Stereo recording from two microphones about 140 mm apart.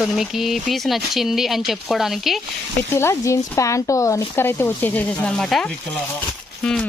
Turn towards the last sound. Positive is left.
turn(degrees=5)  # may be behind; listen again after turning